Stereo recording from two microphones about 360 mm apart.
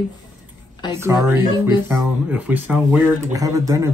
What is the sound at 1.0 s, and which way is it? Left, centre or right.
Speech, centre.